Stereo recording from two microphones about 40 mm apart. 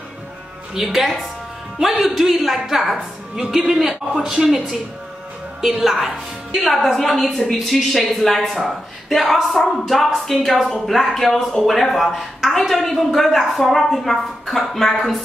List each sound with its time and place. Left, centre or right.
0.7 s speech: centre
3.3 s a woman's voice: centre
6.6 s speech: centre